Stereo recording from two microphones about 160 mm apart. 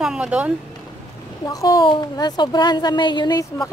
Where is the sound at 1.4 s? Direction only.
20° left (ahead or behind).